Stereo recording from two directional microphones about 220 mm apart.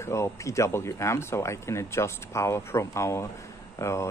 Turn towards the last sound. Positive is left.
turn(degrees=15)  # may be behind; listen again after turning